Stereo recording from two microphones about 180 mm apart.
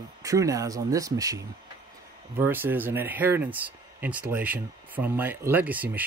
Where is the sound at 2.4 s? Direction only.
10° right (ahead or behind).